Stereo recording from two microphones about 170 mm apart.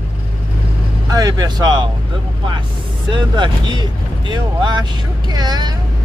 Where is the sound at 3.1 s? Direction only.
25° right (ahead or behind).